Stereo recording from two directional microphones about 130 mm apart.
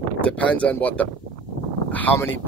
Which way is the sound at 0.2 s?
10° left (ahead or behind).